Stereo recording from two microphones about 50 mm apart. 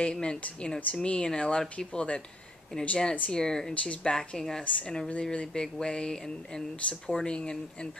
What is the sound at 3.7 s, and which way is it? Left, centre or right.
Speech, left.